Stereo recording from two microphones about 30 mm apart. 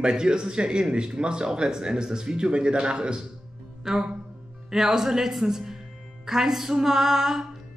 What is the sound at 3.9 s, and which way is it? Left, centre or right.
Speech, centre.